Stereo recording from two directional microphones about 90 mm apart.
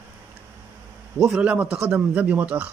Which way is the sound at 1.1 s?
10° right (ahead or behind).